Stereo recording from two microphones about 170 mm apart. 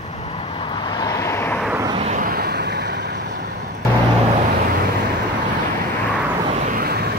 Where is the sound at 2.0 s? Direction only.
50° right (ahead or behind); by 2.9 s 70° right (ahead or behind).